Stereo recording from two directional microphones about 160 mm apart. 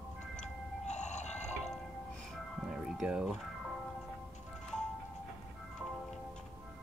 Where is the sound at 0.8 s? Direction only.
45° left (ahead or behind).